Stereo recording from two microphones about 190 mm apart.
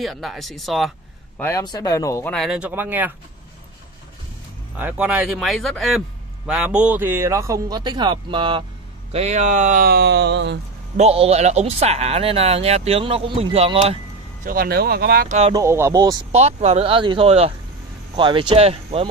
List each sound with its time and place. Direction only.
0.0 s speech: centre (ahead or behind)
1.4 s speech: 15° left (ahead or behind)
2.3 s a man's voice: centre (ahead or behind)
4.7 s a man's voice: 10° right (ahead or behind); by 10.6 s 65° right (ahead or behind)
11.0 s speech: 35° right (ahead or behind)
14.4 s speech: 50° right (ahead or behind)
15.5 s speech: 15° right (ahead or behind)
16.3 s speech: 35° right (ahead or behind)